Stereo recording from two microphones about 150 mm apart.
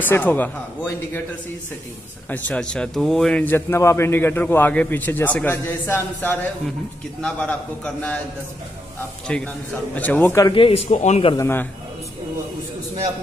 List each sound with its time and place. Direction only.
0.0 s a man's voice: 10° left (ahead or behind)
2.2 s a man's voice: 10° left (ahead or behind)
9.3 s a man's voice: 10° left (ahead or behind)
10.4 s a man's voice: 35° left (ahead or behind)
11.3 s a man's voice: 15° left (ahead or behind)